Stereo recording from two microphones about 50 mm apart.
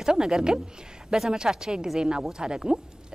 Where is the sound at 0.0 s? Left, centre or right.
Centre.